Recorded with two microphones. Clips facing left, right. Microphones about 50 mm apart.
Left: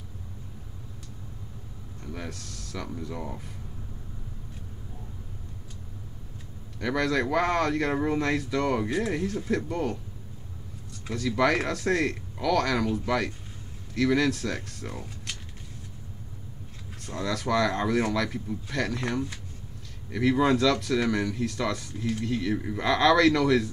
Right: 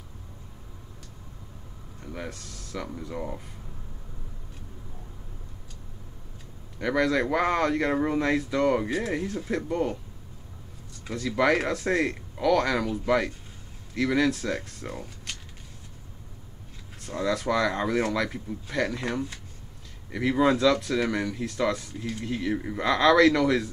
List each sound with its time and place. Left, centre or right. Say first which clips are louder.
2.0 s a sound: right 1 dB; centre
2.3 s speech: right 1 dB; right
6.8 s speech: right 2 dB; centre
11.1 s speech: right 1 dB; centre
17.0 s speech: right 3 dB; centre